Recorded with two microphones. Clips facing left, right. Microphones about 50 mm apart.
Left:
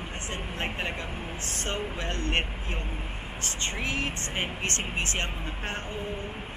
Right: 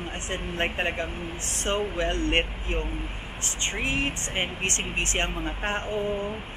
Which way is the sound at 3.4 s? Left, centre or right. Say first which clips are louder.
Right 3 dB; right.